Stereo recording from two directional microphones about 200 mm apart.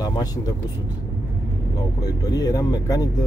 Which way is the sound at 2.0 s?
20° left (ahead or behind).